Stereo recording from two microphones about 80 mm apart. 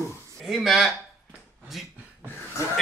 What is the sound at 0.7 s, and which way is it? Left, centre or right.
Speech, centre.